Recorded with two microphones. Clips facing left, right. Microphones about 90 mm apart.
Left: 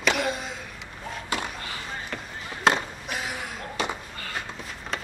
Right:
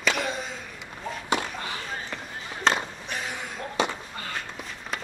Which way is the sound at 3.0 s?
5° left (ahead or behind).